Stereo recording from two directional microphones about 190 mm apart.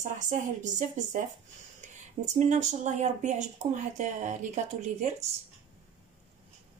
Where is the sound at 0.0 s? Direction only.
40° right (ahead or behind).